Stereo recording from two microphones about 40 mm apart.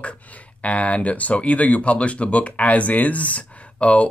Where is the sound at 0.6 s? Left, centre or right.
Left.